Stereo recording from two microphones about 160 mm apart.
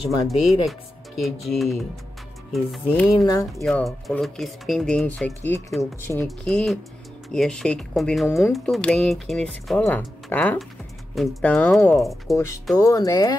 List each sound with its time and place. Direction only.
0.3 s speech: centre (ahead or behind); by 6.2 s 15° left (ahead or behind)
6.2 s speech: centre (ahead or behind)
12.0 s speech: centre (ahead or behind)
12.7 s speech: 20° left (ahead or behind)